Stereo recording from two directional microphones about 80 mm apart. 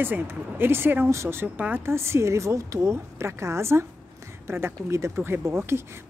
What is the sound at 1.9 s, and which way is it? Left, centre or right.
A woman's voice, right.